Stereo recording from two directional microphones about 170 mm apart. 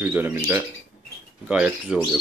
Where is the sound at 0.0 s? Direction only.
10° right (ahead or behind).